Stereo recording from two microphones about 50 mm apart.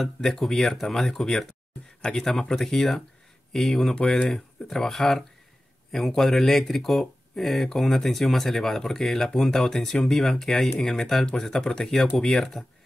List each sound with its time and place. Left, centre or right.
0.0 s speech: centre
3.9 s speech: centre
4.3 s speech: centre